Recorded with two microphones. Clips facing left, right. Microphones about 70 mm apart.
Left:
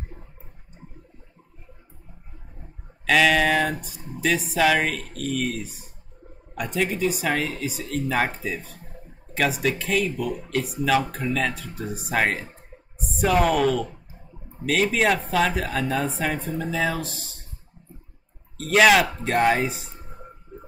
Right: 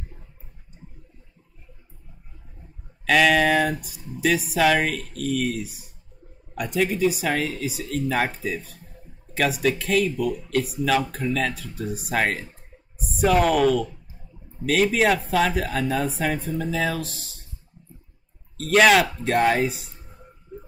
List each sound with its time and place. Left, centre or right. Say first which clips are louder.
3.1 s speech: right 1 dB; centre
18.6 s speech: even; centre
19.9 s a sound: left 5 dB; left